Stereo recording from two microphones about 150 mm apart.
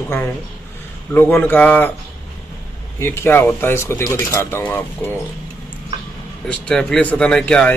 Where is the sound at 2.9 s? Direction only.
15° left (ahead or behind).